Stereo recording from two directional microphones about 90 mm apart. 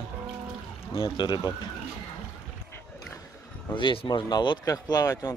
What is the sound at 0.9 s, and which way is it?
Speech, 55° left (ahead or behind).